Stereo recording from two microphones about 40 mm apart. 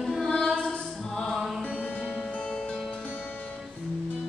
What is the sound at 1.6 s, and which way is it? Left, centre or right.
Music, left.